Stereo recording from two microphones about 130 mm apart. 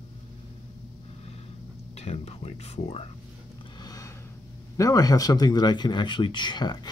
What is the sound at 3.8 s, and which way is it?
Gasp, 25° left (ahead or behind).